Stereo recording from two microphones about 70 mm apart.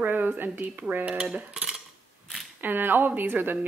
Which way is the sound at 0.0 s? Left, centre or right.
Right.